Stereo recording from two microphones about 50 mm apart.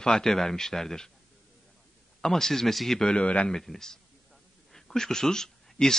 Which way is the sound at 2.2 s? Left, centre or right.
Centre.